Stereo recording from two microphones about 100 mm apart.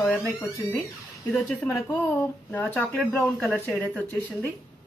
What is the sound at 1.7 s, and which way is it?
Speech, 30° left (ahead or behind).